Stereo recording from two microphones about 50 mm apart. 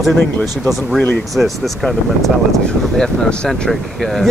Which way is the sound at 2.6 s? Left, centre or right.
Centre.